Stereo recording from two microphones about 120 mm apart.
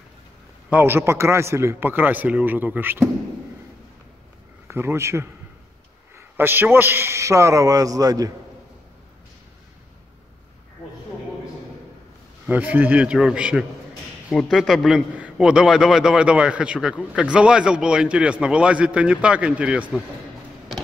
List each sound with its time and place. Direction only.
0.7 s a man's voice: 15° right (ahead or behind)
4.6 s a man's voice: 20° right (ahead or behind)
12.4 s a man's voice: 15° right (ahead or behind)